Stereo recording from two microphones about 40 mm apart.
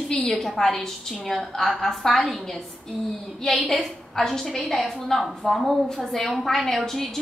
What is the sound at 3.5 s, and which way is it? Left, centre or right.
A woman's voice, centre.